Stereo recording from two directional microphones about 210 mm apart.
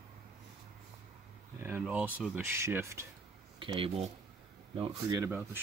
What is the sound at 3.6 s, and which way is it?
Speech, 25° right (ahead or behind).